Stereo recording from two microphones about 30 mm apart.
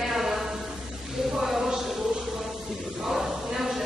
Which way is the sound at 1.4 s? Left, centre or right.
Centre.